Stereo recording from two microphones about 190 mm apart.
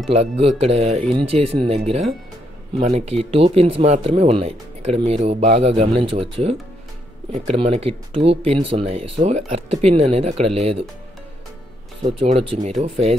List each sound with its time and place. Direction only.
0.1 s speech: 30° right (ahead or behind)
12.0 s speech: 30° right (ahead or behind)